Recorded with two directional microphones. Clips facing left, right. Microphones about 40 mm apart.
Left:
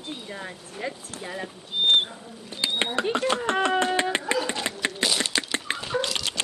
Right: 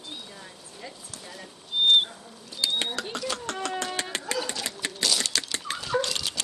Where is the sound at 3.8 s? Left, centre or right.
Left.